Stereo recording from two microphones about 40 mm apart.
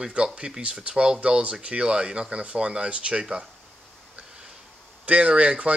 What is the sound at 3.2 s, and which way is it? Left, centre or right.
Speech, centre.